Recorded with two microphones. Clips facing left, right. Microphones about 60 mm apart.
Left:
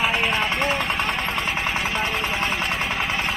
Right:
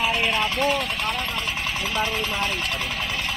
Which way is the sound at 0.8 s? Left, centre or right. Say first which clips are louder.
Left 3 dB; left.